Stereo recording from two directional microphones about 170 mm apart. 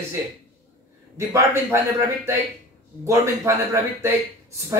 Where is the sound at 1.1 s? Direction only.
15° right (ahead or behind).